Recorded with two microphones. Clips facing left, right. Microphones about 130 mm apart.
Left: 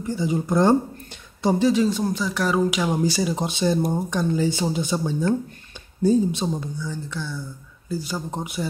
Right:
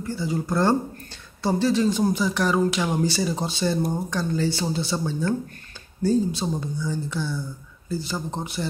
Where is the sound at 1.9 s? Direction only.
5° right (ahead or behind); by 6.5 s 15° left (ahead or behind).